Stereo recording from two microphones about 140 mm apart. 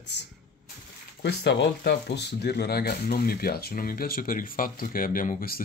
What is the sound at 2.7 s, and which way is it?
Speech, 90° left.